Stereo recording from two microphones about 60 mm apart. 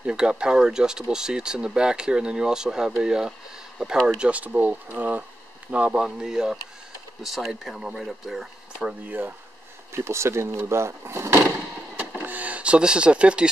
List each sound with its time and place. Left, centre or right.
0.0 s speech: centre
4.2 s speech: right; by 8.5 s centre
8.7 s speech: right
9.9 s speech: right
12.2 s speech: right